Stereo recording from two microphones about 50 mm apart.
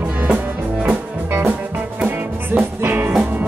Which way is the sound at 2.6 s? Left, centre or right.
Right.